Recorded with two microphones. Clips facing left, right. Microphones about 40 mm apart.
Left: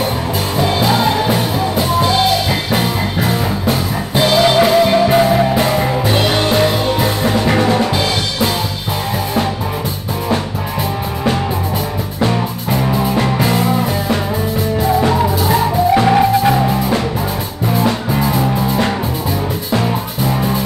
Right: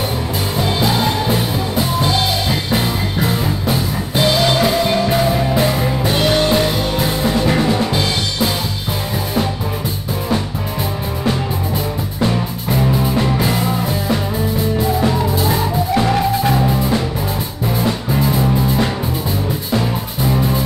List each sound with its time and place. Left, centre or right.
0.6 s music: centre
12.2 s music: centre
15.9 s music: centre
18.2 s music: centre